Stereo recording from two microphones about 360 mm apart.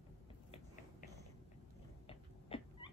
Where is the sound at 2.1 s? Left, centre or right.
Centre.